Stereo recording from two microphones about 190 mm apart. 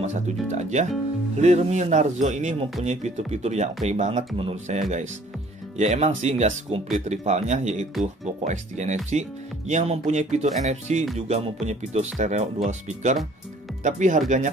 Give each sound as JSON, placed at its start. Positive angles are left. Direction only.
{"t": 0.0, "sound": "speech", "side_deg": -35}